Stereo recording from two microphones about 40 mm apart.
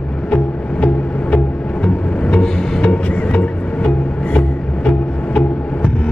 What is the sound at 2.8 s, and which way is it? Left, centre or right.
Music, left.